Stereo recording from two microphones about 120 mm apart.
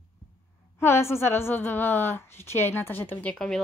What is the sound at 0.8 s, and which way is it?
A woman's voice, 20° left (ahead or behind).